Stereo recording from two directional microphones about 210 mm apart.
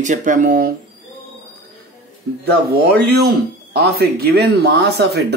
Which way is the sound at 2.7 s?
50° right (ahead or behind).